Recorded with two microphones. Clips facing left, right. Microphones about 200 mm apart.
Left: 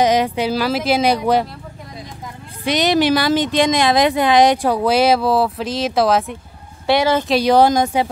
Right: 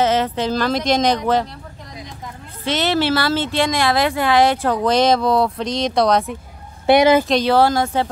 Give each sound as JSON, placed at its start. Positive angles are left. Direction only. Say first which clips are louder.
{"t": 0.0, "sound": "speech", "louder": "left 2 dB", "side_deg": 15}
{"t": 2.6, "sound": "speech", "louder": "left 3 dB", "side_deg": 15}
{"t": 7.0, "sound": "speech", "louder": "right 4 dB", "side_deg": -15}
{"t": 7.2, "sound": "speech", "louder": "left 2 dB", "side_deg": 10}